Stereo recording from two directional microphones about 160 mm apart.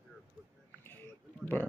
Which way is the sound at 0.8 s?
10° left (ahead or behind).